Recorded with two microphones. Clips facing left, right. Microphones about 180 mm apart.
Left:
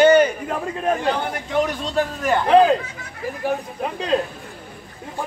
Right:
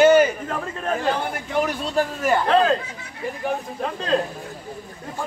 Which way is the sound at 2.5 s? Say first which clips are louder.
Left 6 dB; 15° left (ahead or behind).